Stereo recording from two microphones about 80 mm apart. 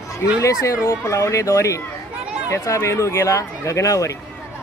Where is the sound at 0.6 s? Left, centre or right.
Left.